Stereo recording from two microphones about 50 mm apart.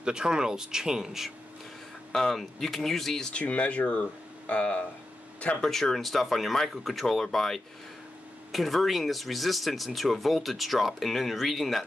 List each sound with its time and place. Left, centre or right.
0.0 s speech: centre
2.1 s speech: centre
3.3 s speech: left
5.6 s speech: centre